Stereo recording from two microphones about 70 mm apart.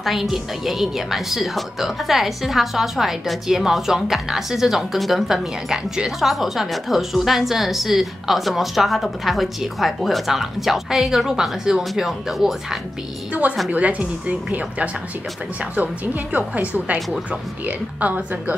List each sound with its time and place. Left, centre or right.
0.0 s a woman's voice: centre
13.3 s a woman's voice: right